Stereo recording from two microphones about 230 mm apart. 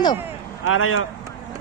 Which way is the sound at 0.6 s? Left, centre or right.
Left.